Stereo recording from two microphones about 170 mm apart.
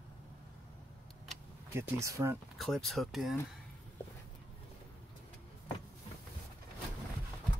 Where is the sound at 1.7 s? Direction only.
15° right (ahead or behind).